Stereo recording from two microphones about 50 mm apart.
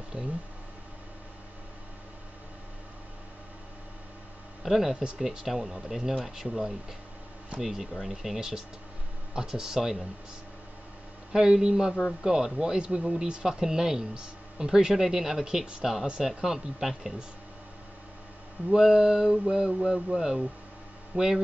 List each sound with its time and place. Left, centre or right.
0.1 s a sound: right
4.6 s speech: centre
11.3 s speech: centre
18.7 s speech: centre
21.1 s a man's voice: right